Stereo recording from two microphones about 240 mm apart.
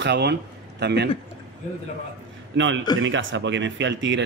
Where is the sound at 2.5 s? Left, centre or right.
Right.